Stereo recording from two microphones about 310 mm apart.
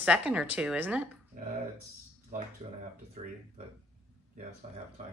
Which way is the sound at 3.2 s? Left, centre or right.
Right.